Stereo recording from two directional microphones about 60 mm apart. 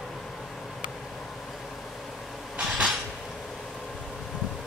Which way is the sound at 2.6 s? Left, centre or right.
Centre.